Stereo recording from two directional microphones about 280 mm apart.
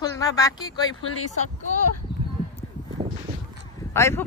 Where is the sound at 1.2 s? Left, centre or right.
Left.